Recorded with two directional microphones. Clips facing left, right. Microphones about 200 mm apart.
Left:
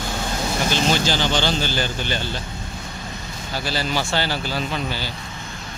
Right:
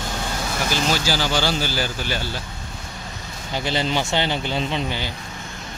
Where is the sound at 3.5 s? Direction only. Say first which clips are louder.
Right 2 dB; 20° right (ahead or behind).